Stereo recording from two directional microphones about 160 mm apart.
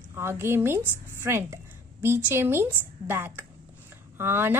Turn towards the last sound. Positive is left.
turn(degrees=-15)  # may be behind; listen again after turning